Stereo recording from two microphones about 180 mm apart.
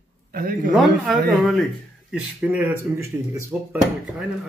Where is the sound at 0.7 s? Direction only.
Centre (ahead or behind).